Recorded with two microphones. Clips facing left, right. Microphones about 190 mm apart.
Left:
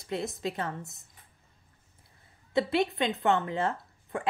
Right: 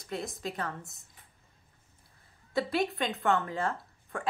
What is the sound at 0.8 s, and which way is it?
Speech, centre (ahead or behind).